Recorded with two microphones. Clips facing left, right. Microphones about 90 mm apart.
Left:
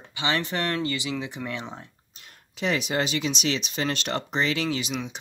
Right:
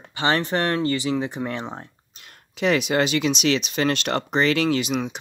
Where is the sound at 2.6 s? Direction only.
70° right (ahead or behind).